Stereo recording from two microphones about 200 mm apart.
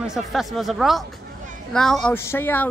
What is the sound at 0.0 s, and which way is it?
Speech, centre (ahead or behind).